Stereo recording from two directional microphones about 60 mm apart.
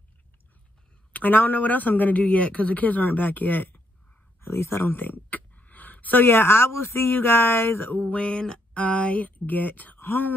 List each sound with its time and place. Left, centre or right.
1.1 s a man's voice: left
4.4 s a sound: left
6.2 s speech: left
8.1 s a man's voice: centre; by 10.3 s left